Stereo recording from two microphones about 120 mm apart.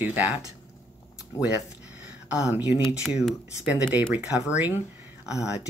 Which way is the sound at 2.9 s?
10° right (ahead or behind).